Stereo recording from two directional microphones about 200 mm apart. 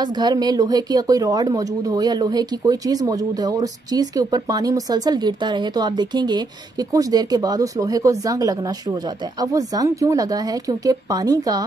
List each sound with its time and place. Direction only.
0.0 s a woman's voice: 20° right (ahead or behind)